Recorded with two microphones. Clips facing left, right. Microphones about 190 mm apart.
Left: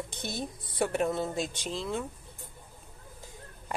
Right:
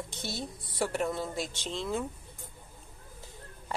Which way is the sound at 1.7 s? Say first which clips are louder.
Right 3 dB; centre (ahead or behind).